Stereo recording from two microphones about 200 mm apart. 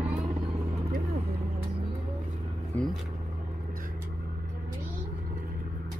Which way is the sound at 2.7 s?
10° left (ahead or behind).